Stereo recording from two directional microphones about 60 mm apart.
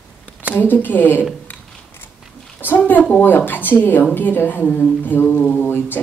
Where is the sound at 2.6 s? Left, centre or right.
Left.